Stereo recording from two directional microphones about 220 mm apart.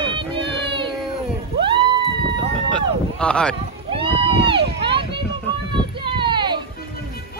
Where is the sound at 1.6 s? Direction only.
20° right (ahead or behind).